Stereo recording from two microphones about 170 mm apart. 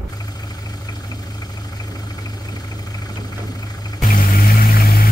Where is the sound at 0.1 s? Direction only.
25° left (ahead or behind).